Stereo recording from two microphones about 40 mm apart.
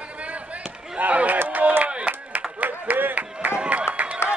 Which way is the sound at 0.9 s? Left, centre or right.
Right.